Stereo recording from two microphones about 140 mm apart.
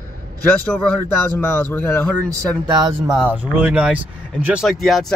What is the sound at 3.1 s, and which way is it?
Speech, 10° right (ahead or behind).